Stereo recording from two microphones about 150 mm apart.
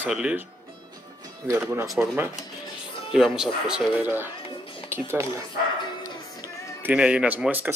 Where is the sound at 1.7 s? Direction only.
15° right (ahead or behind).